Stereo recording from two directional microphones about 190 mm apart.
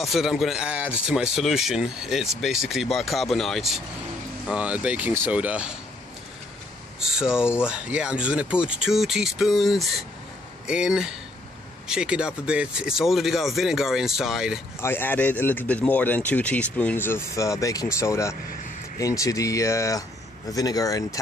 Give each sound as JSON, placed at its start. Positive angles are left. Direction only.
{"t": 0.0, "sound": "speech", "side_deg": 0}
{"t": 7.0, "sound": "a sound", "side_deg": -5}
{"t": 7.6, "sound": "speech", "side_deg": -5}
{"t": 14.8, "sound": "speech", "side_deg": 10}